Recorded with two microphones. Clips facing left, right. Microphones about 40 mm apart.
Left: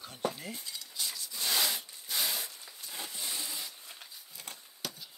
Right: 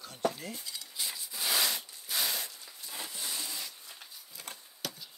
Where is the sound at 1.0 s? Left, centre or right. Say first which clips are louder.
Even; centre.